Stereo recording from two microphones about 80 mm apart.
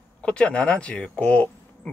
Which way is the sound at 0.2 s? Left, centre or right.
Centre.